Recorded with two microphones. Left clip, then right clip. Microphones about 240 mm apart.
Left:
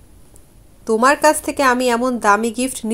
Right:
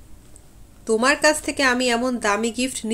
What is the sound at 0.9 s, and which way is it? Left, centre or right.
Speech, centre.